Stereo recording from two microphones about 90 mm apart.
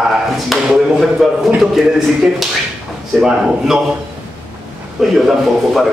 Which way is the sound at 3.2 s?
5° right (ahead or behind).